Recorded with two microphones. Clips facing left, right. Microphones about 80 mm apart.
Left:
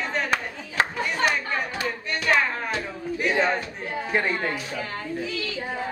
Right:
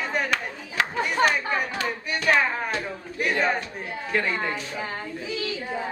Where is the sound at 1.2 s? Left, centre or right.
Right.